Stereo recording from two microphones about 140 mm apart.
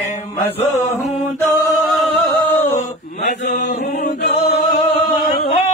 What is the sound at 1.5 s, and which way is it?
Music, 20° left (ahead or behind).